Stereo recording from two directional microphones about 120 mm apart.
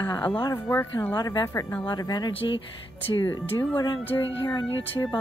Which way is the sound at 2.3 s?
45° left (ahead or behind).